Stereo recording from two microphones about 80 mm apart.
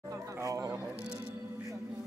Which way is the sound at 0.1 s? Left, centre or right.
Right.